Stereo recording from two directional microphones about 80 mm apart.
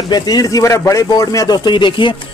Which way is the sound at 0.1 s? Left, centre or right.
Left.